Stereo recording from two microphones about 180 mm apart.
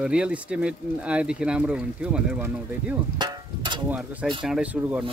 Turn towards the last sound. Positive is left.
turn(degrees=-5)  # may be behind; listen again after turning